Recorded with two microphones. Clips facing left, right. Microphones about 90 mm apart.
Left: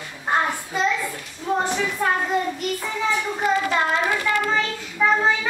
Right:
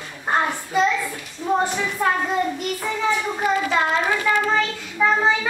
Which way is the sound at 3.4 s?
Centre (ahead or behind).